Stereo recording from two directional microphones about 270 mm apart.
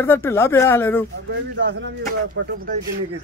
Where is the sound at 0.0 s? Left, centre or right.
Centre.